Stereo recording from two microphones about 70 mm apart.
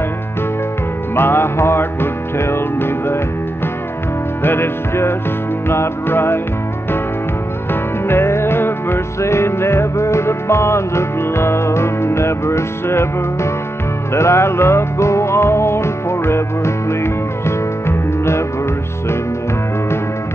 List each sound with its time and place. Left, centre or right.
1.1 s music: left
4.4 s music: left
8.1 s music: left